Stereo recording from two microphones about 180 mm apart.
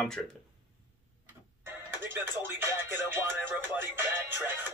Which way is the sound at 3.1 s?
10° right (ahead or behind).